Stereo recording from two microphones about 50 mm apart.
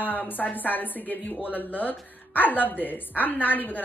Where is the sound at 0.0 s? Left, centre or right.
Left.